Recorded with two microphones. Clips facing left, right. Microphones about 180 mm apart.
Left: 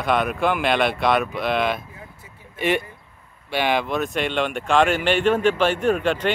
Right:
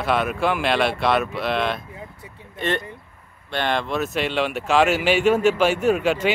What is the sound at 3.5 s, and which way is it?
Speech, 5° left (ahead or behind).